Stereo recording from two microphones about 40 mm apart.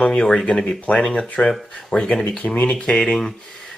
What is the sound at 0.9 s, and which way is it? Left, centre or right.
Speech, left.